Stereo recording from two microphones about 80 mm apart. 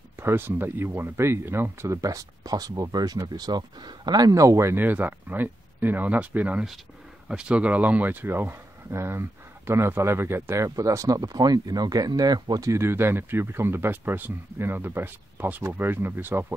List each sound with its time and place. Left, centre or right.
0.2 s speech: right
4.8 s speech: right